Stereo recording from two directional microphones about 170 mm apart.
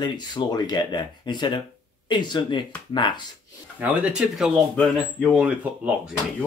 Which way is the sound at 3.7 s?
10° right (ahead or behind).